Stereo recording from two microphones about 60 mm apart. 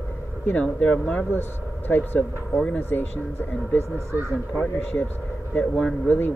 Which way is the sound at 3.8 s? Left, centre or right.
Right.